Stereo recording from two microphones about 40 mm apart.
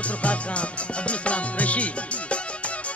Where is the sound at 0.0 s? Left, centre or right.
Left.